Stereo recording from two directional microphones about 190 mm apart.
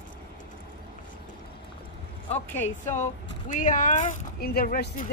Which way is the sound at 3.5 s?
40° left (ahead or behind).